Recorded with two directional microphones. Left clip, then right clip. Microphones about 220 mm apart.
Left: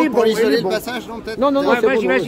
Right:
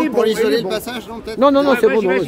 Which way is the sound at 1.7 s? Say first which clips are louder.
Right 1 dB; 50° left (ahead or behind).